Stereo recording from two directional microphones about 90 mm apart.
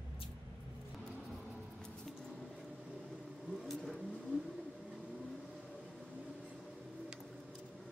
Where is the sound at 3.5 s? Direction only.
Centre (ahead or behind).